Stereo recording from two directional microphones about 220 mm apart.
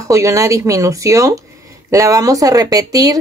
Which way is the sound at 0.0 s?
15° right (ahead or behind).